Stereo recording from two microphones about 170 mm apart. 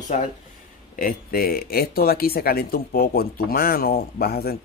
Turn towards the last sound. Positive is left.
turn(degrees=65)  # may be behind; listen again after turning